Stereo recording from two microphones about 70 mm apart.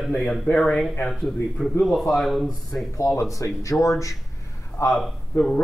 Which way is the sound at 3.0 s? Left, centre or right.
Left.